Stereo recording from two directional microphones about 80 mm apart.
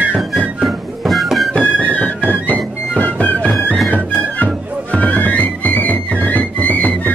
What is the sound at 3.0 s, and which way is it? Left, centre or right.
Music, centre.